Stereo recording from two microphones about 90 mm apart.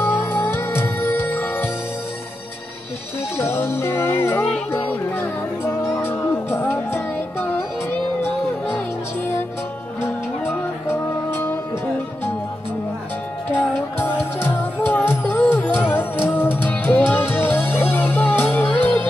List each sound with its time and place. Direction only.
0.0 s music: 25° left (ahead or behind)
3.3 s music: 25° left (ahead or behind)
10.0 s music: 25° left (ahead or behind)
13.5 s music: 25° left (ahead or behind)